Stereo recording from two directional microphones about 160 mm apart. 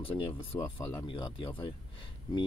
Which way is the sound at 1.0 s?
30° left (ahead or behind).